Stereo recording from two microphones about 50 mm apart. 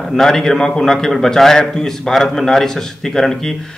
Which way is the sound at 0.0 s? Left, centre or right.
Centre.